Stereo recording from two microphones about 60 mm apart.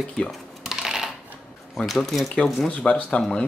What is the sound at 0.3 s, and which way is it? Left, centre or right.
Typing, centre.